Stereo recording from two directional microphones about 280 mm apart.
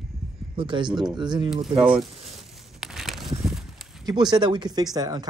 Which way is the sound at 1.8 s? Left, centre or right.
Centre.